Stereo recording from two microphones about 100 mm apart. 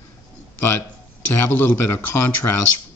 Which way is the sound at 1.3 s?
20° left (ahead or behind).